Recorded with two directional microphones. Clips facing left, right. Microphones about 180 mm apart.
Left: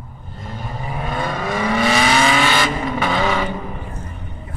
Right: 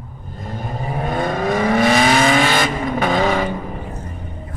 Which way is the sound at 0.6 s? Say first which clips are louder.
Right 3 dB; 40° right (ahead or behind).